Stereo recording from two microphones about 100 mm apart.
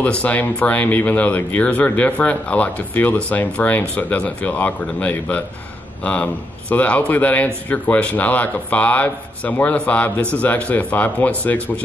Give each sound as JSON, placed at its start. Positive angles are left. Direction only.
{"t": 0.0, "sound": "speech", "side_deg": 15}